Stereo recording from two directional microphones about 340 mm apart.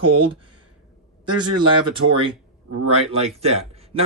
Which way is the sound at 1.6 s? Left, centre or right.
Centre.